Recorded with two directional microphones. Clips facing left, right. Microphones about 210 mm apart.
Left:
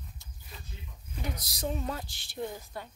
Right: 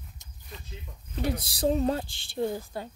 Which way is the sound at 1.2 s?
30° right (ahead or behind).